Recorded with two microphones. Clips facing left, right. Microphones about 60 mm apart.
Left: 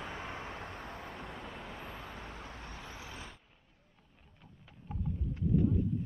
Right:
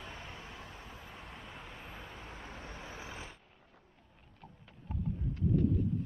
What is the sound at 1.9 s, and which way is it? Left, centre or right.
Vehicle, left.